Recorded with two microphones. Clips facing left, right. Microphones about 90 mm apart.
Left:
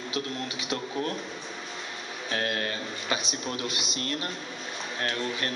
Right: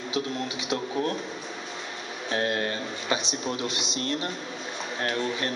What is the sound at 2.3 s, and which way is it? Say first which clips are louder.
Speech: right 3 dB; 10° right (ahead or behind).